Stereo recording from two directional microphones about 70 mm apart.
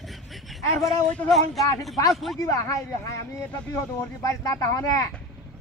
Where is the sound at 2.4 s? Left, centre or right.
Left.